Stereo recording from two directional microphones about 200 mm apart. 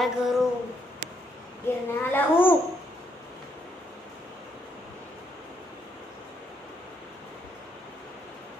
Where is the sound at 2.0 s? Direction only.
10° left (ahead or behind).